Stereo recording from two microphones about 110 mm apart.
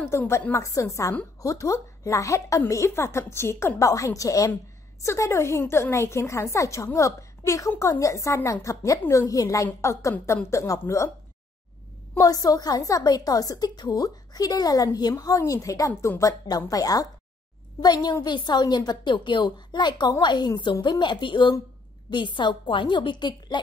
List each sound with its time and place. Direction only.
0.0 s a woman's voice: 25° left (ahead or behind)
12.2 s a woman's voice: 35° left (ahead or behind)